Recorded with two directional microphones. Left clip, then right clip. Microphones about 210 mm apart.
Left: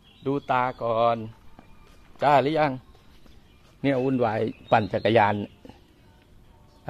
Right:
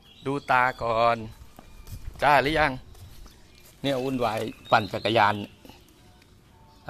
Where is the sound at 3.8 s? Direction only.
30° left (ahead or behind).